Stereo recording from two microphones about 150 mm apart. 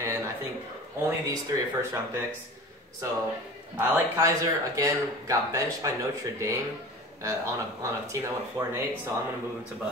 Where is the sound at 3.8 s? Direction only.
20° right (ahead or behind).